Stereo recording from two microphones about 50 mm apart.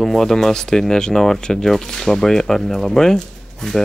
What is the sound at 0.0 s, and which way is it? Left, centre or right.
Speech, centre.